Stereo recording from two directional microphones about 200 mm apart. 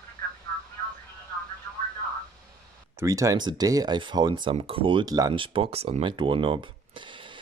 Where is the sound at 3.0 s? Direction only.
15° right (ahead or behind).